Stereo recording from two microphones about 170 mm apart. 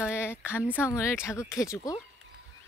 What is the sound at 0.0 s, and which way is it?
Speech, 15° left (ahead or behind).